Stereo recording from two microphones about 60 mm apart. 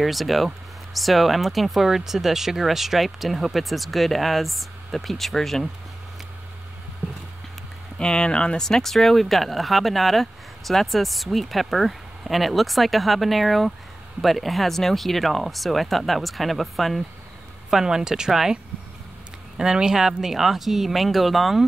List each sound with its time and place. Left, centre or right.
0.0 s speech: centre
8.0 s speech: centre